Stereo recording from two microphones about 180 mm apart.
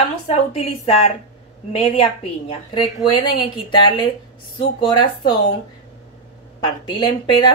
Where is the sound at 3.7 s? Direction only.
25° left (ahead or behind).